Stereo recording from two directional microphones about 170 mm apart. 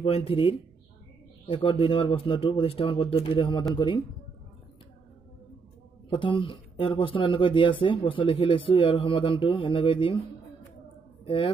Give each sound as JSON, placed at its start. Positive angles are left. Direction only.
{"t": 0.0, "sound": "speech", "side_deg": 35}
{"t": 6.0, "sound": "speech", "side_deg": 30}
{"t": 11.2, "sound": "speech", "side_deg": 30}